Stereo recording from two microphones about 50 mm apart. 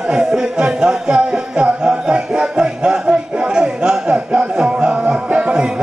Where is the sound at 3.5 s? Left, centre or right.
Centre.